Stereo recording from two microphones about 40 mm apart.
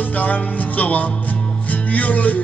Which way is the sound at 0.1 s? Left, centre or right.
Left.